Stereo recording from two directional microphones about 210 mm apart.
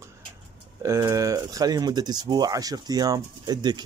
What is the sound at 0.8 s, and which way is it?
Speech, 15° right (ahead or behind).